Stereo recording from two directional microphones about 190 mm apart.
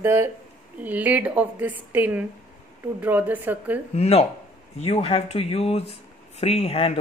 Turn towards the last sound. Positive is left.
turn(degrees=30)  # may be behind; listen again after turning